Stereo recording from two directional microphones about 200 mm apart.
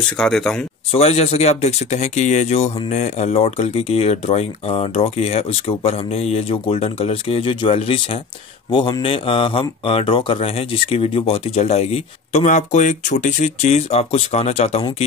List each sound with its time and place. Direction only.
0.2 s speech: 5° left (ahead or behind)
0.9 s speech: 35° left (ahead or behind)